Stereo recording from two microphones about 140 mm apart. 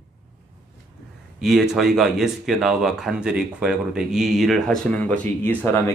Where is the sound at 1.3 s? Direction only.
Centre (ahead or behind).